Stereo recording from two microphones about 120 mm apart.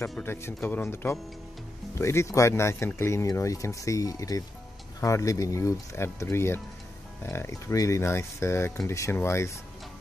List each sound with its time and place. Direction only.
0.2 s speech: 20° left (ahead or behind)